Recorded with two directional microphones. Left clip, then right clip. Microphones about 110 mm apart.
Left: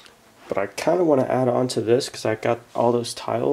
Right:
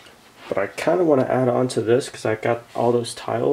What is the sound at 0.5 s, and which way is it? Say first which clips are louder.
Speech: right 1 dB; 15° left (ahead or behind).